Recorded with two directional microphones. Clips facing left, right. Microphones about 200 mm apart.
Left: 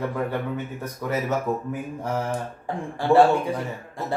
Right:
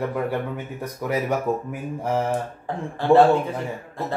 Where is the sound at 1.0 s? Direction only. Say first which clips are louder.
Right 2 dB; 15° right (ahead or behind).